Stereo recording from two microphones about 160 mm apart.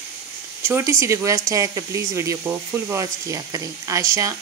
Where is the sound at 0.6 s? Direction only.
15° right (ahead or behind).